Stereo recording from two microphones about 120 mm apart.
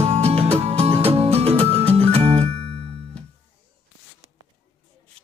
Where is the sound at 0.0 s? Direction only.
60° right (ahead or behind).